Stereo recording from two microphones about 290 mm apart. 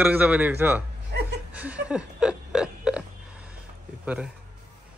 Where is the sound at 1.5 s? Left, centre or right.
Centre.